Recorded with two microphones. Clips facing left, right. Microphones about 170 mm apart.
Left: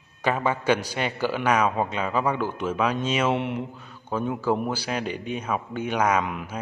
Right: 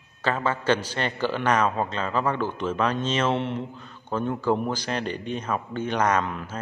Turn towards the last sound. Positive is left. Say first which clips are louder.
# even
turn(degrees=10)  # may be behind; listen again after turning